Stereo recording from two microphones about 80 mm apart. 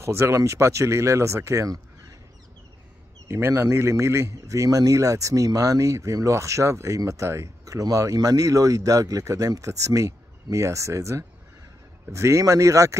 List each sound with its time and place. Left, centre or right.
0.0 s speech: right
3.3 s speech: right